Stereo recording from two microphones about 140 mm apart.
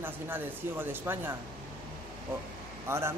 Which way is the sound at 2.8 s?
20° right (ahead or behind).